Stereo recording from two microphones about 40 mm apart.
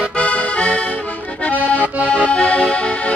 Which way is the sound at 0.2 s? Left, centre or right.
Left.